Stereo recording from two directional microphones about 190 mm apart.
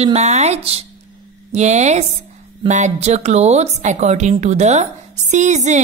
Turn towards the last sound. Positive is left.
turn(degrees=-40)  # may be behind; listen again after turning